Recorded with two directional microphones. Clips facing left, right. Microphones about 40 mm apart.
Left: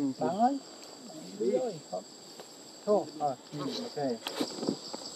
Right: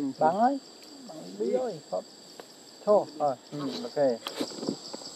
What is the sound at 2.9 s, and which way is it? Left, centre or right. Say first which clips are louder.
Speech: right 5 dB; centre.